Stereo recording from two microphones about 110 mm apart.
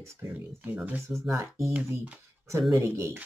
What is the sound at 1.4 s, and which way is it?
Speech, 25° right (ahead or behind).